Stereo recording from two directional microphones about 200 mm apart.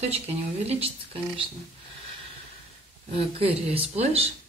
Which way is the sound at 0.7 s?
30° right (ahead or behind).